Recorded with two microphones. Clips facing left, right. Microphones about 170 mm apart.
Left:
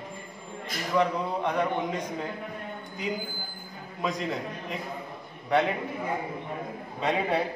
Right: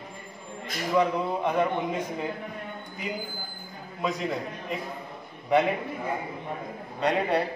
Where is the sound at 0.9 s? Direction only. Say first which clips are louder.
Right 1 dB; 5° right (ahead or behind).